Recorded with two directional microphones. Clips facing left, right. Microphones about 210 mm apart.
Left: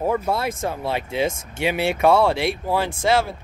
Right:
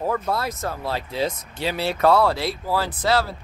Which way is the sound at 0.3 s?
25° left (ahead or behind).